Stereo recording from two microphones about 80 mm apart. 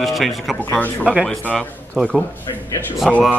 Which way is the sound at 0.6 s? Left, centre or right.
Centre.